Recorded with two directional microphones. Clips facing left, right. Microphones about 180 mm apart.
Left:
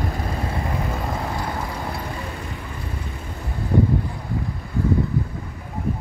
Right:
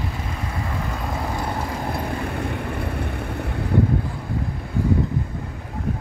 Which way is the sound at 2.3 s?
65° right (ahead or behind).